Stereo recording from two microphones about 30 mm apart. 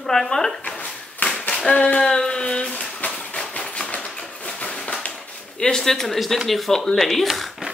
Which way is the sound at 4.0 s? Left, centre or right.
Left.